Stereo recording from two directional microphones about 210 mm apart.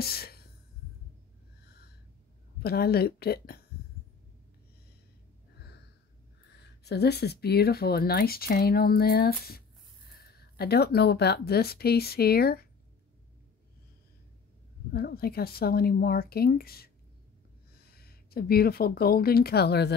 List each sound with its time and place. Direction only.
0.0 s a sound: 45° left (ahead or behind)
2.6 s speech: 50° left (ahead or behind)
6.8 s speech: 50° left (ahead or behind)
14.9 s speech: 45° left (ahead or behind)